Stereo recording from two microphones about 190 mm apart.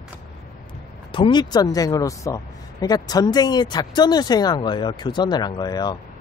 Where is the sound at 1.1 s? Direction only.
25° left (ahead or behind).